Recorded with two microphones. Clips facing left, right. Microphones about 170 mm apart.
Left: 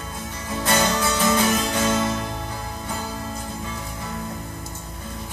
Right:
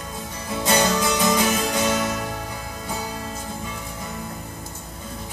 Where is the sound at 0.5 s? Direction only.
15° right (ahead or behind).